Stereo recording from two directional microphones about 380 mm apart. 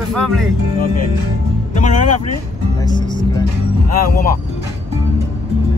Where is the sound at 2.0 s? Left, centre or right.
Left.